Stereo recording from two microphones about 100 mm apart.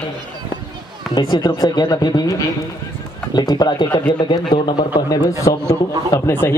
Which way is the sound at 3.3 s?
45° left (ahead or behind).